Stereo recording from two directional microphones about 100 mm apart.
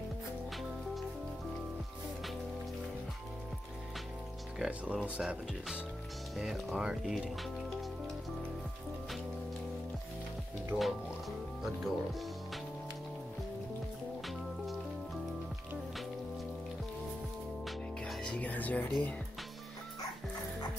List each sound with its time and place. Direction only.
4.6 s speech: 10° right (ahead or behind)
10.7 s speech: 20° right (ahead or behind)
11.6 s speech: centre (ahead or behind)
17.6 s music: 5° left (ahead or behind)